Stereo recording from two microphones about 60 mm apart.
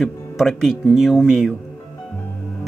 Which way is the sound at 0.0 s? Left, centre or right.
Centre.